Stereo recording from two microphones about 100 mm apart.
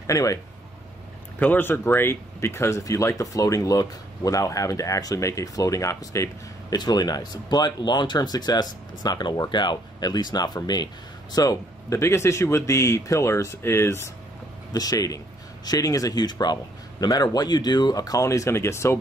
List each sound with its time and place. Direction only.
0.0 s speech: 35° left (ahead or behind)
1.4 s speech: 20° left (ahead or behind)
14.7 s speech: 35° left (ahead or behind)